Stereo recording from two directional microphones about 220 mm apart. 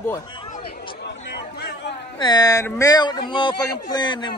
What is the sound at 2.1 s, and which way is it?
Speech, 20° left (ahead or behind).